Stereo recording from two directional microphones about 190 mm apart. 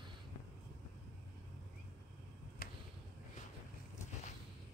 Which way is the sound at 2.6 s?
50° left (ahead or behind).